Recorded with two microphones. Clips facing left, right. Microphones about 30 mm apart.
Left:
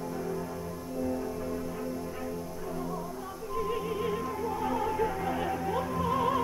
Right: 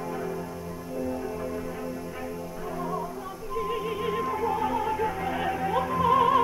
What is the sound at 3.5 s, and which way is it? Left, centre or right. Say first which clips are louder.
Music: right 2 dB; centre.